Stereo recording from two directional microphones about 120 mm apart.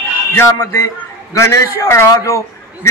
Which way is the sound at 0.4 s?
20° left (ahead or behind).